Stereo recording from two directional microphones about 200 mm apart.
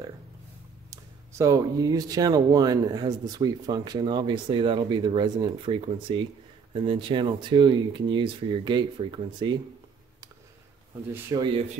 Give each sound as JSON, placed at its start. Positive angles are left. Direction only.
{"t": 1.4, "sound": "speech", "side_deg": -15}
{"t": 11.2, "sound": "speech", "side_deg": -20}